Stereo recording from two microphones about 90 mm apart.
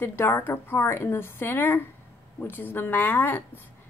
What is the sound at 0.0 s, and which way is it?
A woman's voice, 25° left (ahead or behind).